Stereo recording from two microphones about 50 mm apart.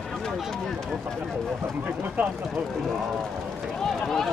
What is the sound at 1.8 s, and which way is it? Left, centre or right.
Speech, right.